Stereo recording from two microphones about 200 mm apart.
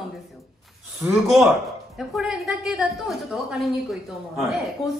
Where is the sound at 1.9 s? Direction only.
Centre (ahead or behind).